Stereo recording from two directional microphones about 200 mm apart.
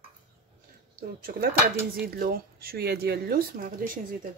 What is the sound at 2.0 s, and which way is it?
Speech, 50° right (ahead or behind).